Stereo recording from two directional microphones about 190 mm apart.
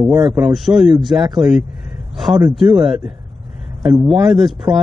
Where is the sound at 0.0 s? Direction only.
15° right (ahead or behind).